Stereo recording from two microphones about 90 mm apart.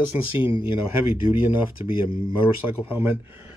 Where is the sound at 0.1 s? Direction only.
20° right (ahead or behind).